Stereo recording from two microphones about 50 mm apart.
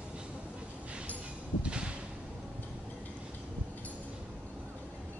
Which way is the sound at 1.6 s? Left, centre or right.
Right.